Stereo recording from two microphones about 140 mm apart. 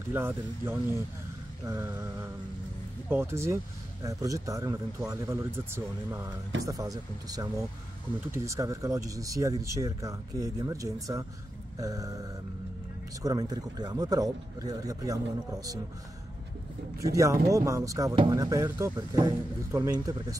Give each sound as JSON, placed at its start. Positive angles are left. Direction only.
{"t": 0.1, "sound": "speech", "side_deg": -15}
{"t": 3.1, "sound": "speech", "side_deg": -15}
{"t": 13.2, "sound": "speech", "side_deg": -25}
{"t": 17.0, "sound": "speech", "side_deg": -20}